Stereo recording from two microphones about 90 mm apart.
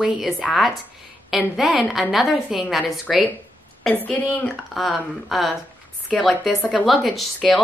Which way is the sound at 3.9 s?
20° left (ahead or behind).